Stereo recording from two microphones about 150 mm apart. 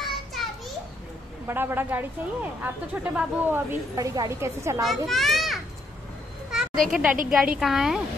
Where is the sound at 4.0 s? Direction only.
20° right (ahead or behind).